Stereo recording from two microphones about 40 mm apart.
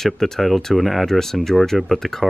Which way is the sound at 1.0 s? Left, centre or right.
Centre.